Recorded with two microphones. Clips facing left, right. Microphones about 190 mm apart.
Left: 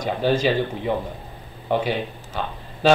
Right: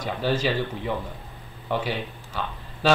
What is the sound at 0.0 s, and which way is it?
Speech, 20° left (ahead or behind).